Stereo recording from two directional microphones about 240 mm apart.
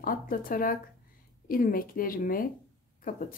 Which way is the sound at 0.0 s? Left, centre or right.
Left.